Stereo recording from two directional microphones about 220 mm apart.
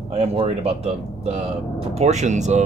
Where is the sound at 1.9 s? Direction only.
30° right (ahead or behind).